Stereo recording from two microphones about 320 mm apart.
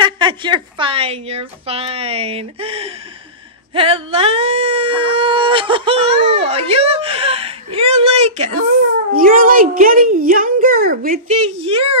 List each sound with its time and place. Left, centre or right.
0.0 s a child's voice: centre